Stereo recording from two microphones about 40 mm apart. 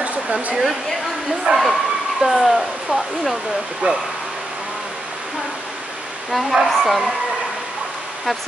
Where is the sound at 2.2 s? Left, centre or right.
Centre.